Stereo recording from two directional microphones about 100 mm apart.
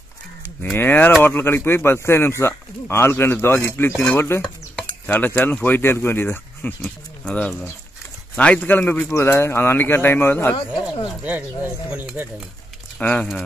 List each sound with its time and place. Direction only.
0.7 s speech: 20° left (ahead or behind)
4.4 s a sound: 10° left (ahead or behind)
5.1 s speech: 20° left (ahead or behind)
6.8 s speech: 10° left (ahead or behind)
11.2 s speech: 20° right (ahead or behind)
13.0 s speech: 10° left (ahead or behind)